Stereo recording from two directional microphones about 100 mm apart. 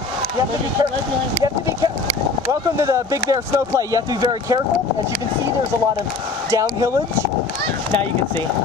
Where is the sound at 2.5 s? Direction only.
35° right (ahead or behind).